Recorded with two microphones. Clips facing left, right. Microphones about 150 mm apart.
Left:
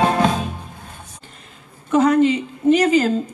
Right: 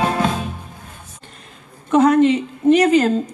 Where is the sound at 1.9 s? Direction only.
Centre (ahead or behind).